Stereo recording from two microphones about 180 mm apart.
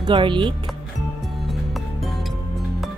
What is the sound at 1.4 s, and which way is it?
Music, centre (ahead or behind).